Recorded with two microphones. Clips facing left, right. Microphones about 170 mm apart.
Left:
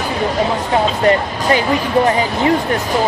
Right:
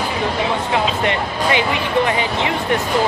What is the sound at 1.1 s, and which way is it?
Speech, 40° left (ahead or behind).